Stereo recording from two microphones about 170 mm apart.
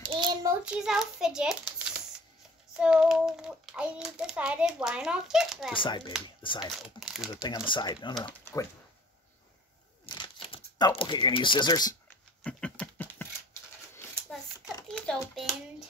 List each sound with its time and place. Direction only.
0.0 s child singing: 30° right (ahead or behind)
0.5 s a child's voice: 5° right (ahead or behind)
5.8 s speech: 25° left (ahead or behind)
7.0 s speech: 5° right (ahead or behind)
7.4 s speech: 25° left (ahead or behind)
8.3 s speech: 15° left (ahead or behind)
10.0 s crumpling: 30° left (ahead or behind)
11.0 s speech: 25° left (ahead or behind)
12.4 s a sound: 5° left (ahead or behind)
14.9 s a child's voice: 5° left (ahead or behind)